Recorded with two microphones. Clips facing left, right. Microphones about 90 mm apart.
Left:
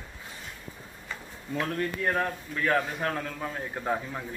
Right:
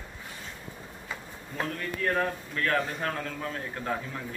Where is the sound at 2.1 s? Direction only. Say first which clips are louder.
Even; 5° left (ahead or behind).